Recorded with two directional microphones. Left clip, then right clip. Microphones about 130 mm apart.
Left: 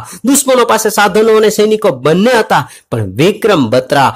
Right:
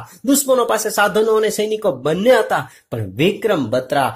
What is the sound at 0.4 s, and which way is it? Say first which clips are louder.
Speech: left 8 dB; 30° left (ahead or behind).